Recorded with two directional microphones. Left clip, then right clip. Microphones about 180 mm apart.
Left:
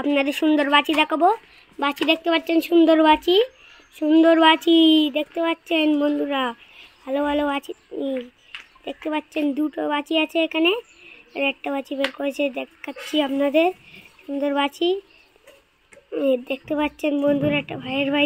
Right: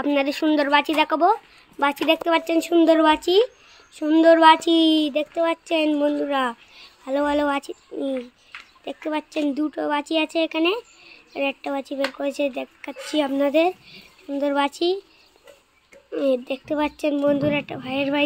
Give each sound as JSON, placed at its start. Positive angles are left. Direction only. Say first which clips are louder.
{"t": 0.0, "sound": "child singing", "louder": "left 1 dB", "side_deg": 5}
{"t": 14.7, "sound": "speech", "louder": "left 1 dB", "side_deg": -30}
{"t": 16.1, "sound": "child singing", "louder": "left 1 dB", "side_deg": 0}